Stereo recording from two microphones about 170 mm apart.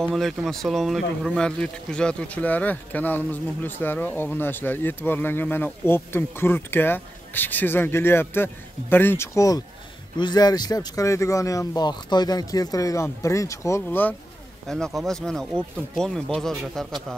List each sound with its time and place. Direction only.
0.0 s speech: centre (ahead or behind)
14.7 s speech: centre (ahead or behind)